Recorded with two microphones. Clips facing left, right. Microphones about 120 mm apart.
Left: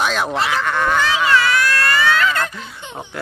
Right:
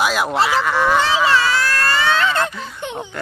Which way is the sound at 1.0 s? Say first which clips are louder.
Even; 30° right (ahead or behind).